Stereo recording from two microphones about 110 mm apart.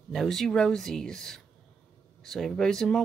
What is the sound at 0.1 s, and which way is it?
Speech, centre (ahead or behind).